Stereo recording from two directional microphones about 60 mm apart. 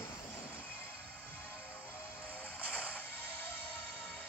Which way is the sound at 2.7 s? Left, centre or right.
Left.